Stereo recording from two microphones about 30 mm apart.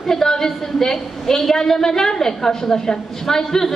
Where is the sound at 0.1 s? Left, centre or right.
Centre.